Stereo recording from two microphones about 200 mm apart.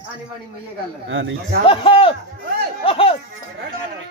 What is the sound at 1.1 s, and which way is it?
Speech, 70° right (ahead or behind).